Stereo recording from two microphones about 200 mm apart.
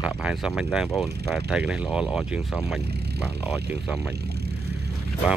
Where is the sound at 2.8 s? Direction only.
55° right (ahead or behind).